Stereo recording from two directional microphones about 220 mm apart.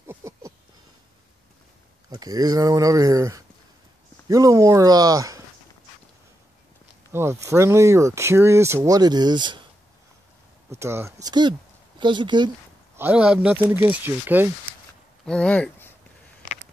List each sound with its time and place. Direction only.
0.0 s a sound: 10° right (ahead or behind)
2.0 s speech: 15° right (ahead or behind)
7.1 s speech: 10° right (ahead or behind)
10.7 s speech: 10° right (ahead or behind)
12.9 s speech: 5° right (ahead or behind)
15.2 s speech: 5° left (ahead or behind)